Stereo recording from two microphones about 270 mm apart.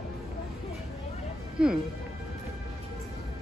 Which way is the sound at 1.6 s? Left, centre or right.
Centre.